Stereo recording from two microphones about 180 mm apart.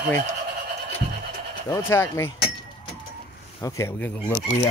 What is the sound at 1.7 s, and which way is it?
Speech, 15° left (ahead or behind).